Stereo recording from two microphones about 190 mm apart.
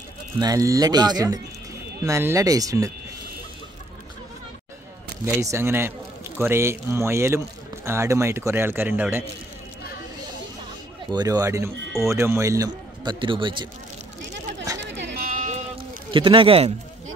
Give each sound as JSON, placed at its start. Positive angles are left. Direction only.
{"t": 0.4, "sound": "a man's voice", "side_deg": -20}
{"t": 5.2, "sound": "a man's voice", "side_deg": -15}
{"t": 11.1, "sound": "a man's voice", "side_deg": -20}
{"t": 14.8, "sound": "a sound", "side_deg": -65}
{"t": 16.1, "sound": "a man's voice", "side_deg": -25}